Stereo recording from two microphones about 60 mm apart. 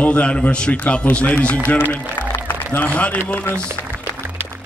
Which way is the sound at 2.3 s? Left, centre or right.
Left.